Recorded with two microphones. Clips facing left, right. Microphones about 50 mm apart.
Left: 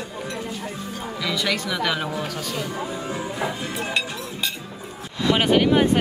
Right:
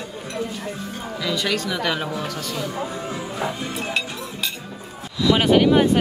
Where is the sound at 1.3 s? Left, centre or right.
Centre.